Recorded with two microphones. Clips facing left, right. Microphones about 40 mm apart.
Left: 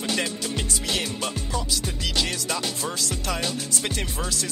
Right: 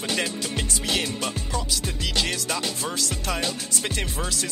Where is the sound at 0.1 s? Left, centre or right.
Right.